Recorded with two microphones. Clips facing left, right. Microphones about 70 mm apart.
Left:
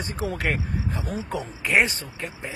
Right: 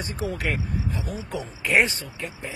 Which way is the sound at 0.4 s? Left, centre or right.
Left.